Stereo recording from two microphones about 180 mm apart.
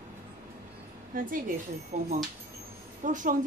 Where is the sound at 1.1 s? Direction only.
50° right (ahead or behind).